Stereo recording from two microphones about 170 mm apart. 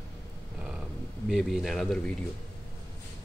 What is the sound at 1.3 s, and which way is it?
Speech, centre (ahead or behind).